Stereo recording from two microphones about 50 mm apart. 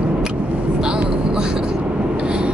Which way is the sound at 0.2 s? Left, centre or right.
Centre.